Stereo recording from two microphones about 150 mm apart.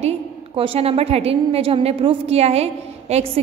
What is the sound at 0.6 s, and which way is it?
A woman's voice, 40° right (ahead or behind).